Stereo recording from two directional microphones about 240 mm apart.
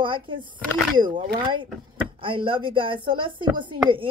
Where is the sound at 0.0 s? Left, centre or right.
Right.